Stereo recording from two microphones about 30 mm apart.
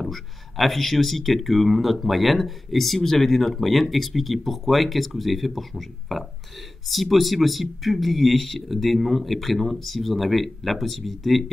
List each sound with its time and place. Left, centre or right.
0.0 s speech: centre